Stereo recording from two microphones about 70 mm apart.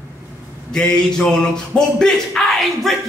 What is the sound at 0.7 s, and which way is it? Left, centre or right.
Speech, centre.